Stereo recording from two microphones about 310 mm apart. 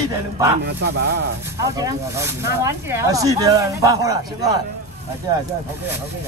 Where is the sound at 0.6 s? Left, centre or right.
Right.